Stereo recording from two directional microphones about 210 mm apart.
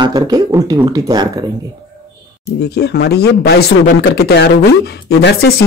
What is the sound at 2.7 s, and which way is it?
Speech, 50° left (ahead or behind).